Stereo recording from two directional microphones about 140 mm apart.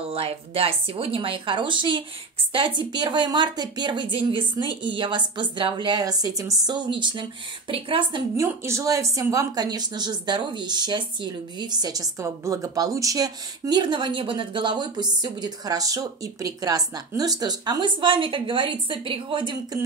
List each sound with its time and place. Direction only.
0.1 s a woman's voice: 45° right (ahead or behind)
8.4 s a woman's voice: 20° right (ahead or behind); by 19.8 s 35° right (ahead or behind)